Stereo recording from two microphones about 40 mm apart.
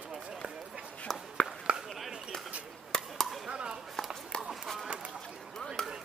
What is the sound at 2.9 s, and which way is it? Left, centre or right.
Chop, left.